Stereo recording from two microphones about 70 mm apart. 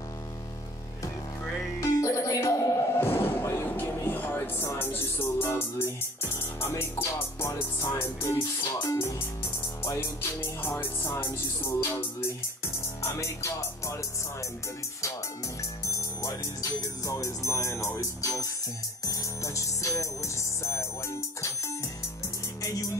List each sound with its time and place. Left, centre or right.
1.8 s music: left
3.0 s music: left
4.1 s music: left
6.8 s music: left
13.0 s music: left
15.8 s music: left